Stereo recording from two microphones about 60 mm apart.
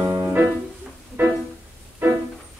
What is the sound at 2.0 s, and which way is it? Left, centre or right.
Music, right.